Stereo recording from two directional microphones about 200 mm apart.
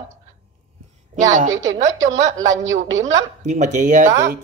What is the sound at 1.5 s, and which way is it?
Speech, 70° right (ahead or behind).